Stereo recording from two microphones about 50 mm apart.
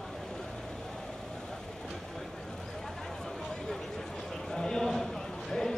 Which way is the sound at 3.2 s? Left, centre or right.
Centre.